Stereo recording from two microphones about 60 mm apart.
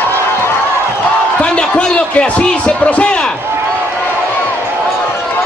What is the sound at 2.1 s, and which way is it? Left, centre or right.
A man's voice, centre.